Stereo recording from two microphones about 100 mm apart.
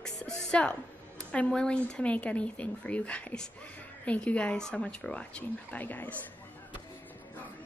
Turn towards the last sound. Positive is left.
turn(degrees=15)  # may be behind; listen again after turning